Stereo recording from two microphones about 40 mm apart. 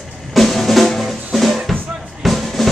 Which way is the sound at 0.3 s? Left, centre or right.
Centre.